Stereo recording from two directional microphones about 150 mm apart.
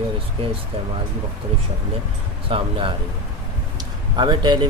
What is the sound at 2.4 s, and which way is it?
Speech, 35° right (ahead or behind).